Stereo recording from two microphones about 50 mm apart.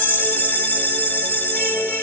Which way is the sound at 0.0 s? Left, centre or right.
Left.